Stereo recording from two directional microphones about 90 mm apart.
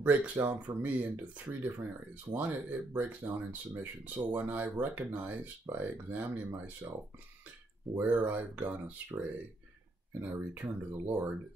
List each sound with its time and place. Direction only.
0.0 s speech: 15° right (ahead or behind)
7.9 s speech: 20° right (ahead or behind)